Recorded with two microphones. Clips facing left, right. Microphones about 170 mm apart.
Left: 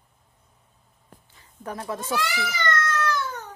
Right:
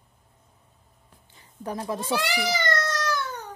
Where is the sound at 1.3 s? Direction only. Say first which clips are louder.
Right 2 dB; 25° right (ahead or behind).